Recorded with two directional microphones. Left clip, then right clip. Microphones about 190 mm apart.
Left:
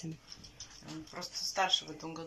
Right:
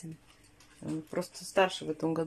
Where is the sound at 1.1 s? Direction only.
60° right (ahead or behind).